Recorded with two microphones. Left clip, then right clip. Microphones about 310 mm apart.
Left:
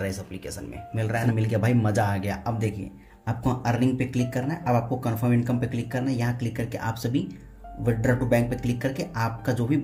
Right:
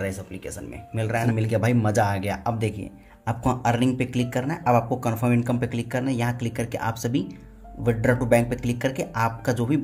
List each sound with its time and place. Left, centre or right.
0.9 s speech: centre